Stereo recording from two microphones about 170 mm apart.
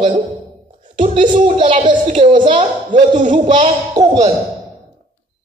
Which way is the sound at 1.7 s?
50° right (ahead or behind).